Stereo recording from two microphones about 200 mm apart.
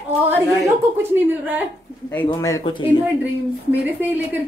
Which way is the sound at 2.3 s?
15° left (ahead or behind).